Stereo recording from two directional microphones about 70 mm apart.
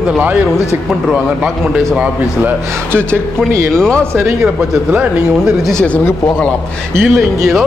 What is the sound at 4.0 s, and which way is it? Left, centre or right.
Speech, right.